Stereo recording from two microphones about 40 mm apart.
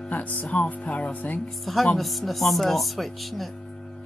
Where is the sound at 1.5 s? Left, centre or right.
Centre.